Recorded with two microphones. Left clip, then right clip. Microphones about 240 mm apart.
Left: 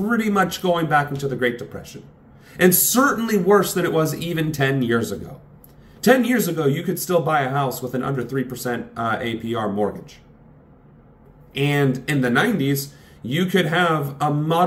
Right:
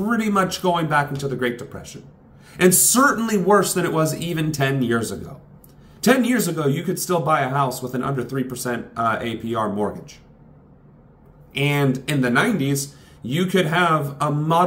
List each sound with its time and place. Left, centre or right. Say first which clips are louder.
0.0 s speech: left 1 dB; centre
11.5 s speech: even; centre